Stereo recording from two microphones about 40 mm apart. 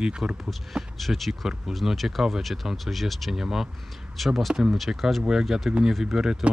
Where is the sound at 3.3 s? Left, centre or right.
Centre.